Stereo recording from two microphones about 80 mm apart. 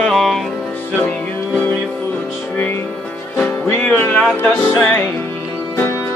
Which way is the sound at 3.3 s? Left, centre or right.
Centre.